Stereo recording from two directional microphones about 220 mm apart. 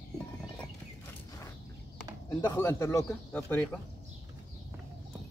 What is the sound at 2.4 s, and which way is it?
Speech, 15° left (ahead or behind).